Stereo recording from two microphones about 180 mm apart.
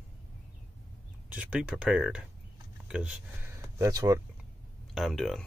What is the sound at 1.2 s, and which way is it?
Speech, 5° right (ahead or behind).